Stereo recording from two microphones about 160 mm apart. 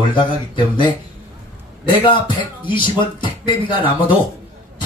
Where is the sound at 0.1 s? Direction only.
30° left (ahead or behind).